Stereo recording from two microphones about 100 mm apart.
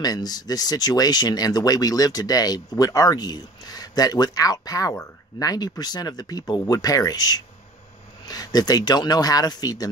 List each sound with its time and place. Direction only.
0.0 s speech: 40° left (ahead or behind)